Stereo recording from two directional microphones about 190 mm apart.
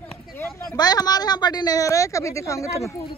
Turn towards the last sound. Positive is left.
turn(degrees=15)  # may be behind; listen again after turning